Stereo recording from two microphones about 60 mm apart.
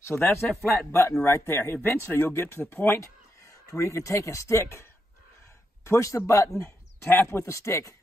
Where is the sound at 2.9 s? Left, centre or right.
Left.